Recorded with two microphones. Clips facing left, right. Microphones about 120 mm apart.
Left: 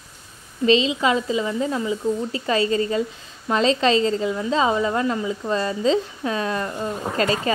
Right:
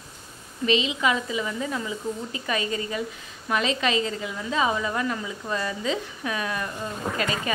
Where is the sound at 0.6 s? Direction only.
30° left (ahead or behind).